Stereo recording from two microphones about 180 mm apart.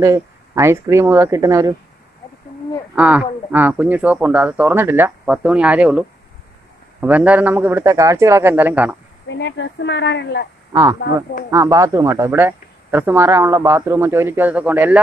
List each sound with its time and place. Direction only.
0.0 s speech: 15° right (ahead or behind)
3.0 s speech: 10° right (ahead or behind)
9.3 s speech: 85° left
10.7 s speech: 20° right (ahead or behind)